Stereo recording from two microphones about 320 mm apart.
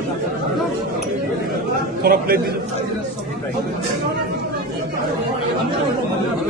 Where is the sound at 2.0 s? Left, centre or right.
Right.